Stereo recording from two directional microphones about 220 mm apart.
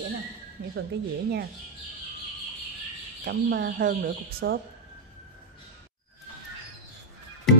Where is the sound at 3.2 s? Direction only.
45° right (ahead or behind).